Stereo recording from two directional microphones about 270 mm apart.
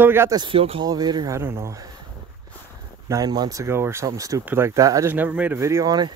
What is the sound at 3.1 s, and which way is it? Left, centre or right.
Speech, centre.